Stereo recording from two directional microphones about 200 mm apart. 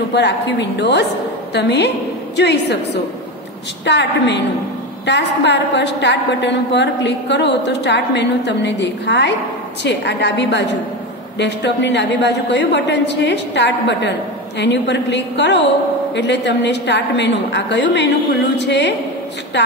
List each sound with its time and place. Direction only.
0.1 s a woman's voice: 60° left (ahead or behind)